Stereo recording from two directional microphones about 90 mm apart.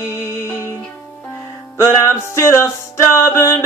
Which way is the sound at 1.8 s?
35° left (ahead or behind).